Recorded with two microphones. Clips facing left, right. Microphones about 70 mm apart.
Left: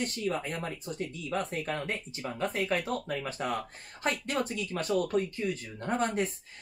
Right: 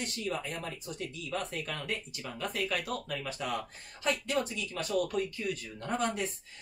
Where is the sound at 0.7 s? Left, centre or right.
Left.